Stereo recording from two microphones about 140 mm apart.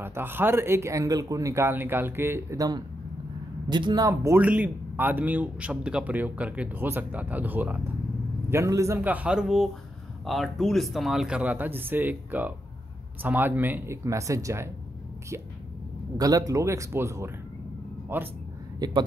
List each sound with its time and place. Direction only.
0.0 s speech: 15° right (ahead or behind)
4.4 s speech: 10° right (ahead or behind)
16.2 s speech: 25° right (ahead or behind)
18.8 s speech: 25° right (ahead or behind)